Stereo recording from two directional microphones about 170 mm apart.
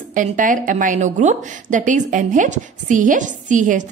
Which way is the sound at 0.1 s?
50° right (ahead or behind).